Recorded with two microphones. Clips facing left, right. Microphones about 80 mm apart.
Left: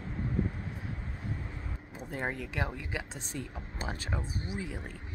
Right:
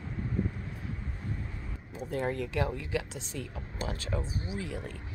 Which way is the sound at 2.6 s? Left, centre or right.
Left.